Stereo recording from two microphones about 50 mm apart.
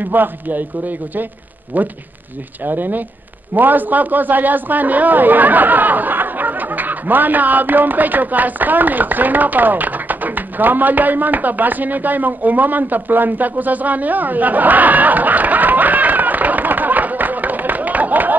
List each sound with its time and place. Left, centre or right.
0.0 s a man's voice: right